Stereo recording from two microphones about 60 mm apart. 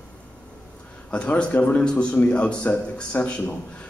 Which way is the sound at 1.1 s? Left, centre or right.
Centre.